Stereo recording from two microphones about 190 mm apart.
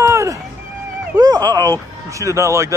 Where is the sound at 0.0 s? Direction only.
15° right (ahead or behind).